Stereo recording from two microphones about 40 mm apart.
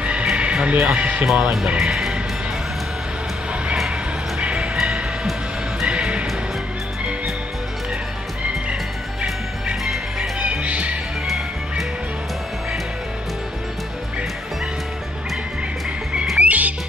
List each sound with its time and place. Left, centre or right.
0.0 s a sound: right
0.9 s speech: right
1.2 s speech: centre
1.8 s music: centre
4.4 s music: right
5.9 s music: right
10.6 s music: right
16.3 s frog: right